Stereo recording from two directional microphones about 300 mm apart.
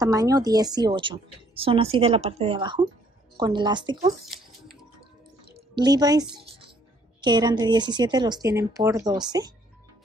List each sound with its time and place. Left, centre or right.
0.0 s a woman's voice: centre
5.8 s a woman's voice: centre